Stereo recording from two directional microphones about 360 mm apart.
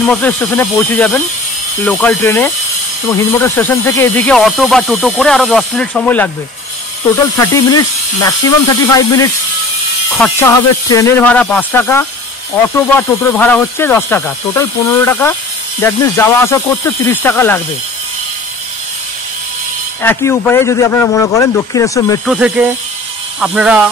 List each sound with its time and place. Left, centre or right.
0.0 s speech: centre
7.3 s speech: centre
20.0 s speech: centre
22.3 s speech: centre